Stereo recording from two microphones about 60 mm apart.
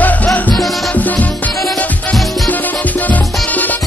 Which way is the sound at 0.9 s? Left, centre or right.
Left.